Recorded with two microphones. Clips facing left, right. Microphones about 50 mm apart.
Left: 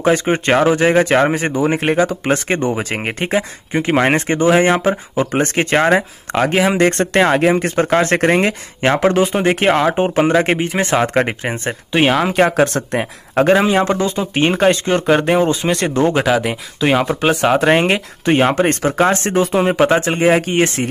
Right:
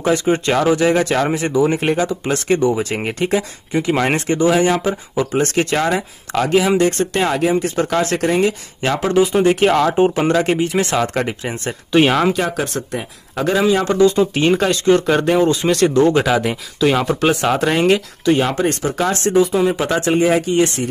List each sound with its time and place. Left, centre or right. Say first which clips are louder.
0.0 s speech: left 1 dB; left
11.5 s speech: right 5 dB; left
12.3 s speech: left 5 dB; left
16.2 s speech: left 1 dB; centre; by 20.9 s left